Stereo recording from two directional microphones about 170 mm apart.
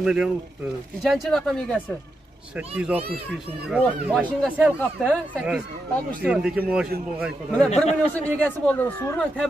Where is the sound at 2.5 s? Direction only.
5° right (ahead or behind).